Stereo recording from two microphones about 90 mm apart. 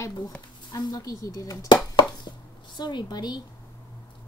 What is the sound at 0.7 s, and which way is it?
Speech, 45° left (ahead or behind).